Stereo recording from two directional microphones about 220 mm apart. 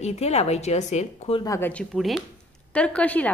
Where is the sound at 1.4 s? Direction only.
15° left (ahead or behind).